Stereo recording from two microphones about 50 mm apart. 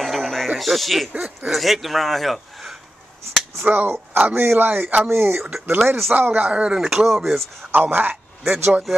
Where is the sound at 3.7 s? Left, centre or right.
Right.